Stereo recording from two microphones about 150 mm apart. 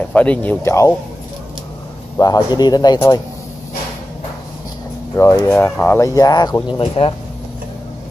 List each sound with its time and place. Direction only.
0.1 s speech: 10° left (ahead or behind)
2.1 s speech: 25° left (ahead or behind)
5.1 s speech: 20° left (ahead or behind)
6.8 s speech: 35° left (ahead or behind)